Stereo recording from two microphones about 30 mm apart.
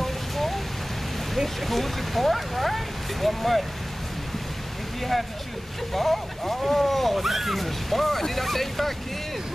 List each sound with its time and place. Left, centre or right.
0.0 s vehicle: centre
1.3 s speech: centre
5.9 s speech: centre